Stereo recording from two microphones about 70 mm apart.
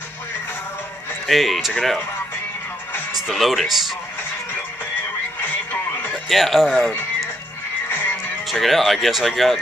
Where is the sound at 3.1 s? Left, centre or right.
Centre.